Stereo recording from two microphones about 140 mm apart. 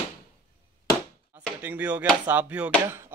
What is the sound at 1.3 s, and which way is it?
Drawer open or close, 10° right (ahead or behind).